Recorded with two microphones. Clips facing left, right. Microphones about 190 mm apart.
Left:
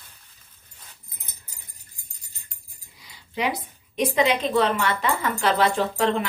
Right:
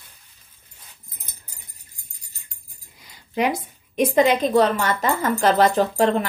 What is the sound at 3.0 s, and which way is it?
A woman's voice, 50° right (ahead or behind).